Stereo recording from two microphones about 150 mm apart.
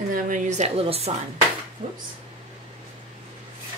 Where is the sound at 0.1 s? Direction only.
60° right (ahead or behind); by 2.0 s 35° right (ahead or behind).